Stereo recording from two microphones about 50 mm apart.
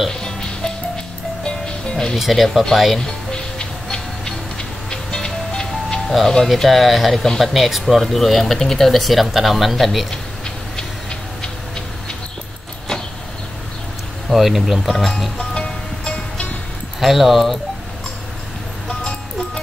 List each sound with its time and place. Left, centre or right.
0.1 s music: centre
2.1 s speech: centre
3.0 s music: centre
6.6 s speech: centre
14.3 s speech: centre
15.5 s music: centre
17.0 s speech: centre
18.9 s music: centre